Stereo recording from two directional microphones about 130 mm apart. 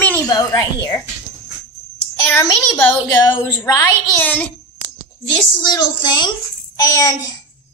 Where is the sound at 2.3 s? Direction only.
20° left (ahead or behind).